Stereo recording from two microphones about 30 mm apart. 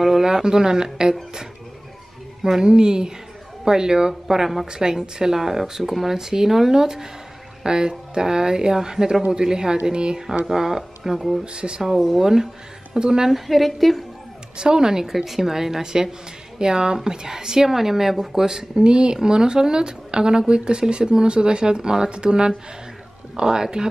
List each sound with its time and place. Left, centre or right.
0.2 s a woman's voice: right
2.6 s a woman's voice: right
10.4 s a woman's voice: centre
11.4 s speech: right
12.2 s a woman's voice: centre
13.3 s a woman's voice: centre
14.6 s a woman's voice: right
15.0 s a woman's voice: centre
18.4 s a woman's voice: right
18.8 s a woman's voice: right